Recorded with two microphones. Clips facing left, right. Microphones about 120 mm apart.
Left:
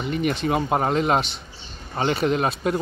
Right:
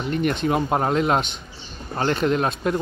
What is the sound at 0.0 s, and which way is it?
Speech, centre (ahead or behind).